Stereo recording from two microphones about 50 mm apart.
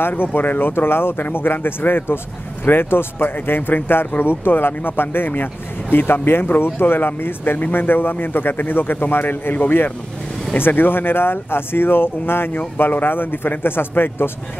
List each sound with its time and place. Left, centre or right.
0.1 s speech: left